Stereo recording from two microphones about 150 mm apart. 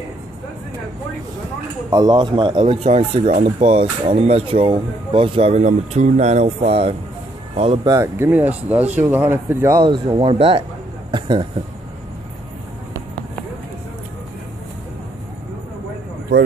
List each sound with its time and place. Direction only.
1.9 s speech: 25° right (ahead or behind)
2.6 s speech: 45° right (ahead or behind)
7.8 s speech: 20° right (ahead or behind)
9.8 s speech: 35° right (ahead or behind)